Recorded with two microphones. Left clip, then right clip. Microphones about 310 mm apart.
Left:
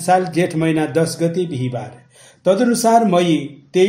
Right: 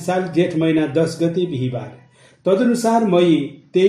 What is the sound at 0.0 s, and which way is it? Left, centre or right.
Speech, left.